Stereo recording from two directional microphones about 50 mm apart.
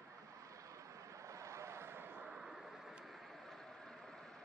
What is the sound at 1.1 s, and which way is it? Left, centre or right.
Vehicle, right.